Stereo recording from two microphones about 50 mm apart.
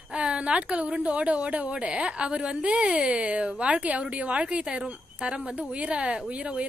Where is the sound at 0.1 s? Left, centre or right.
Centre.